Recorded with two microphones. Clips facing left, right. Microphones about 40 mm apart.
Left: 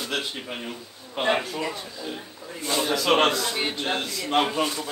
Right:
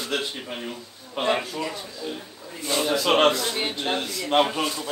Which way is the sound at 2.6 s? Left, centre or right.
Centre.